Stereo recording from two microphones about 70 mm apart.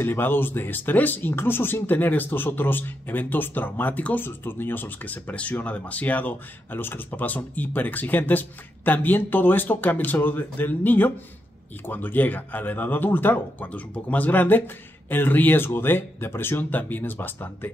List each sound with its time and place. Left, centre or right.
0.0 s speech: left